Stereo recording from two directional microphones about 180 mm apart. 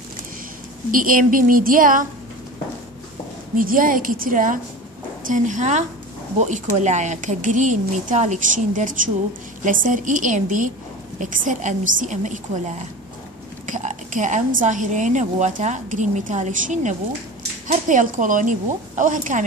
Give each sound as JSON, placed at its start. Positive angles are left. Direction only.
{"t": 0.9, "sound": "a woman's voice", "side_deg": -50}
{"t": 3.5, "sound": "a woman's voice", "side_deg": -50}